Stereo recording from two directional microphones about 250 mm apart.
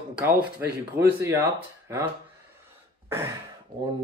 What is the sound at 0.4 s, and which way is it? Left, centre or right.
Speech, centre.